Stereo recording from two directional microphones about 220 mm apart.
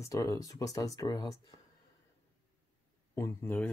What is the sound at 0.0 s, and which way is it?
Speech, 15° left (ahead or behind).